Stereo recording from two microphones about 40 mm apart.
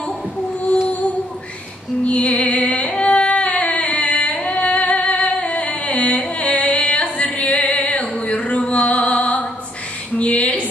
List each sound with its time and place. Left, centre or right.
2.0 s music: left
3.0 s carnatic music: left
4.4 s music: left
6.0 s carnatic music: left
6.3 s music: left
10.1 s a sound: left